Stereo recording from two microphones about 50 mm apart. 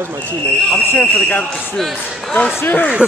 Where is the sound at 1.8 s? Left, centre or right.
Centre.